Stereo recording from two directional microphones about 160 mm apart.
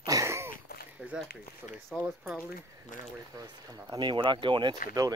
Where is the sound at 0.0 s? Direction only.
20° right (ahead or behind).